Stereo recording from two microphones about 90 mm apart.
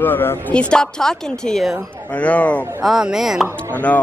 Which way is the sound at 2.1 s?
15° left (ahead or behind).